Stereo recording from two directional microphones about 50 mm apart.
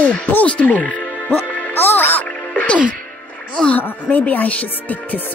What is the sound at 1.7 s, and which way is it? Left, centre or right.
Speech, left.